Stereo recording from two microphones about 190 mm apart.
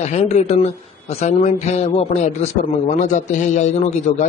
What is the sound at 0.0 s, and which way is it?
A man's voice, 35° left (ahead or behind).